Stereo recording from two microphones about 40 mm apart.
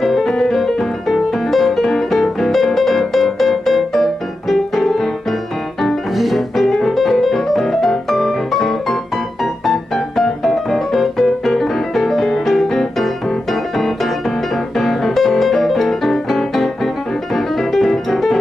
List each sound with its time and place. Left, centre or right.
0.0 s music: centre
6.1 s music: centre